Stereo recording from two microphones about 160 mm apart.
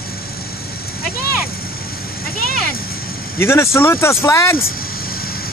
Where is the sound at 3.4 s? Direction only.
15° left (ahead or behind).